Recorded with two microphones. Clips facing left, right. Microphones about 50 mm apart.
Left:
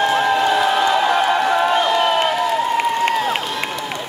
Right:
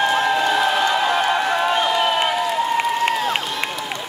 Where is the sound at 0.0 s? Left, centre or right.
Centre.